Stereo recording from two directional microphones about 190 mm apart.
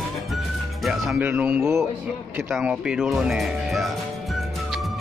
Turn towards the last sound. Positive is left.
turn(degrees=0)  # may be behind; listen again after turning